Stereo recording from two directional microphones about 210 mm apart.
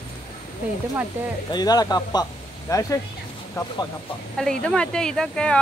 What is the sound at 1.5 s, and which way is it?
Speech, 20° left (ahead or behind).